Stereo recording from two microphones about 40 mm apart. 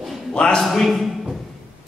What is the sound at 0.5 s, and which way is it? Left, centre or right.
Speech, centre.